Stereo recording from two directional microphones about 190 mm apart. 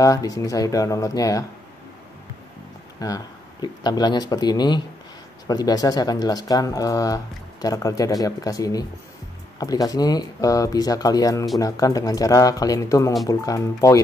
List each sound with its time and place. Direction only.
0.0 s speech: 20° left (ahead or behind)
3.0 s speech: 20° left (ahead or behind)